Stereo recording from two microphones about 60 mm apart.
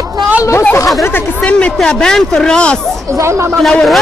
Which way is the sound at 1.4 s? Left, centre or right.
Centre.